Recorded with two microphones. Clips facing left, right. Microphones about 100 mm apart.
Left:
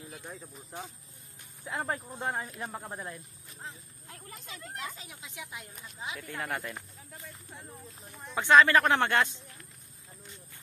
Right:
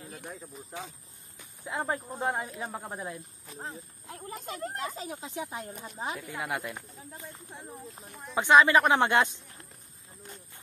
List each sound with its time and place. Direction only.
0.3 s speech: centre (ahead or behind)
3.5 s speech: 35° right (ahead or behind)
4.4 s speech: 45° right (ahead or behind)
6.1 s speech: 10° right (ahead or behind)
7.1 s speech: 25° right (ahead or behind)